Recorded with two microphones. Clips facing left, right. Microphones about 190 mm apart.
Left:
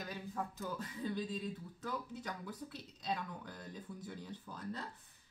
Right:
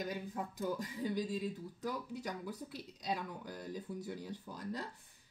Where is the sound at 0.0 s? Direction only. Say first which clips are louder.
Right 3 dB; 15° right (ahead or behind).